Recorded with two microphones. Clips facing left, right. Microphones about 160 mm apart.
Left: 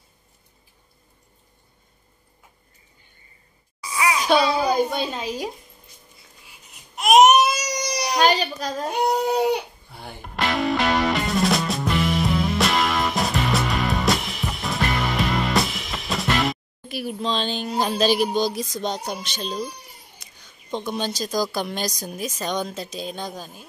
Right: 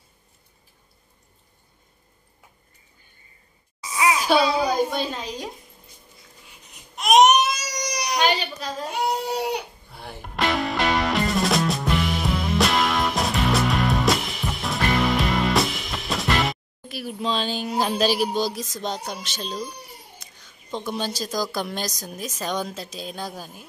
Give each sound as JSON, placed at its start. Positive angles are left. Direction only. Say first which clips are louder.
{"t": 3.8, "sound": "a sound", "louder": "right 1 dB", "side_deg": -20}
{"t": 4.2, "sound": "a child's voice", "louder": "left 2 dB", "side_deg": 0}
{"t": 7.0, "sound": "baby cry", "louder": "left 2 dB", "side_deg": 5}
{"t": 8.2, "sound": "a sound", "louder": "left 4 dB", "side_deg": 40}
{"t": 9.9, "sound": "music", "louder": "even", "side_deg": 0}
{"t": 17.2, "sound": "a woman's voice", "louder": "right 1 dB", "side_deg": -5}
{"t": 20.7, "sound": "a woman's voice", "louder": "left 1 dB", "side_deg": -5}